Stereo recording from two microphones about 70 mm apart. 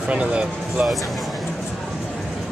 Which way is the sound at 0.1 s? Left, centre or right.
Centre.